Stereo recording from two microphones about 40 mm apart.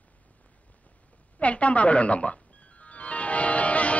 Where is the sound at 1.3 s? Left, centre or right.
Left.